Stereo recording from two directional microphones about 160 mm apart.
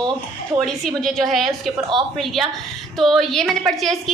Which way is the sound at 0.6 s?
Centre (ahead or behind).